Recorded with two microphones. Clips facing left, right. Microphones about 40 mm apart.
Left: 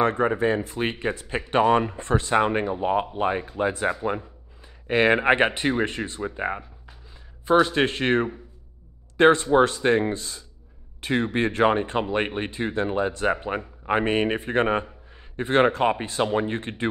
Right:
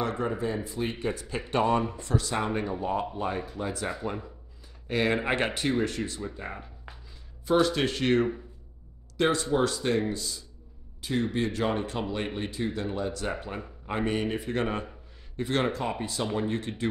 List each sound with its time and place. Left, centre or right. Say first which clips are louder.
0.0 s speech: left 8 dB; left
0.7 s speech: left 5 dB; left
0.9 s speech: left 4 dB; left
7.4 s a man's voice: left 5 dB; left
16.3 s speech: left 4 dB; left